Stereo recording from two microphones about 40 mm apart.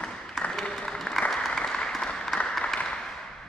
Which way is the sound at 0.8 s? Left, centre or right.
Centre.